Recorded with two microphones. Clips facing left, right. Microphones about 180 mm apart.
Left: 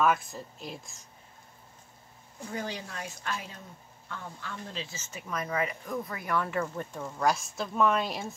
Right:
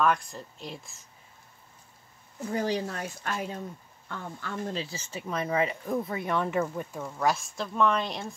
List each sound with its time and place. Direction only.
0.0 s speech: 5° left (ahead or behind)
2.5 s a woman's voice: 35° right (ahead or behind)
6.6 s speech: 10° right (ahead or behind)